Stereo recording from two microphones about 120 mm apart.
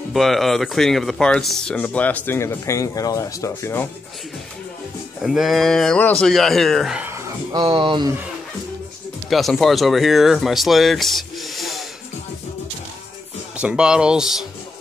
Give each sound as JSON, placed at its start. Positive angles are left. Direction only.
{"t": 0.1, "sound": "speech", "side_deg": 0}
{"t": 5.2, "sound": "speech", "side_deg": 0}
{"t": 7.0, "sound": "a sound", "side_deg": -20}
{"t": 7.5, "sound": "speech", "side_deg": -45}
{"t": 9.3, "sound": "speech", "side_deg": 0}
{"t": 13.6, "sound": "speech", "side_deg": -10}